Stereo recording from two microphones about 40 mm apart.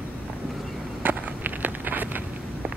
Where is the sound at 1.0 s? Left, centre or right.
Right.